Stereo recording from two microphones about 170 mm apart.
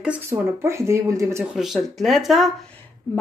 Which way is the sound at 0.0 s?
10° right (ahead or behind).